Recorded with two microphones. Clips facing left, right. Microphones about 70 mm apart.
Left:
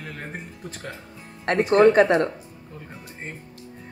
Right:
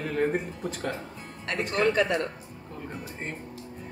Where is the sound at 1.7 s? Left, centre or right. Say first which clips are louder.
Left 9 dB; left.